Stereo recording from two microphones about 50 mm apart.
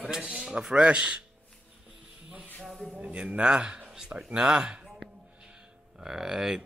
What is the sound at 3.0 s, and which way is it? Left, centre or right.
Speech, right.